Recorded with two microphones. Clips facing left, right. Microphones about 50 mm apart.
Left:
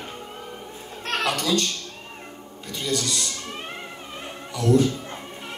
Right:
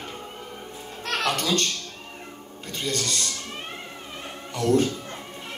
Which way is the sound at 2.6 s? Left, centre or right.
Right.